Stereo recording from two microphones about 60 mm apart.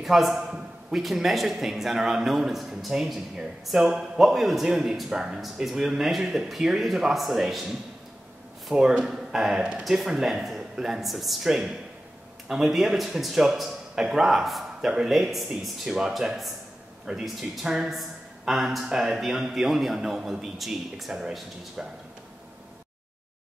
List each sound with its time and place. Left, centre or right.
0.0 s a man's voice: centre
8.7 s a man's voice: centre